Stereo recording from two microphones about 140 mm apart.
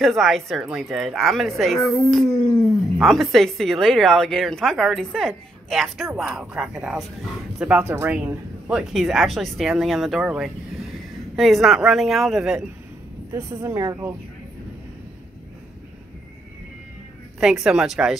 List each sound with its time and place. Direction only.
0.0 s speech: centre (ahead or behind)
2.3 s a sound: 25° left (ahead or behind)
3.0 s speech: centre (ahead or behind); by 8.2 s 15° right (ahead or behind)
8.6 s speech: 5° right (ahead or behind)
13.3 s speech: 20° right (ahead or behind)
17.4 s speech: 5° right (ahead or behind)